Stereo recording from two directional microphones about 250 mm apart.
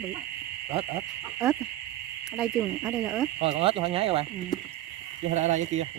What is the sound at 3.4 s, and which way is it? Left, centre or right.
Speech, right.